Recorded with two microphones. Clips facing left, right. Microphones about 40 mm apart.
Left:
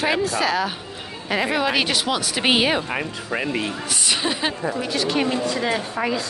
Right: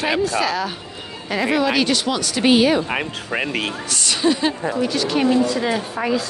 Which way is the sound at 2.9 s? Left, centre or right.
Right.